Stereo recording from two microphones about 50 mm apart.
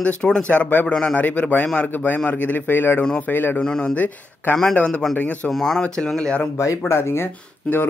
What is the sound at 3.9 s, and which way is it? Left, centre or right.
Speech, left.